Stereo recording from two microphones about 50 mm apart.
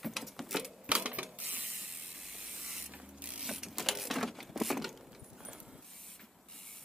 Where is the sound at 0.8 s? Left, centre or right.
Right.